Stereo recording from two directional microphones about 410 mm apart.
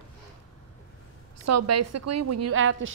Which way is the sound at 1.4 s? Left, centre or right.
Right.